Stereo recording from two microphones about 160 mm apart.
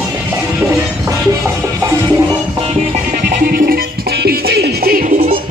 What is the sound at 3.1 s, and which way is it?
Music, 60° right (ahead or behind).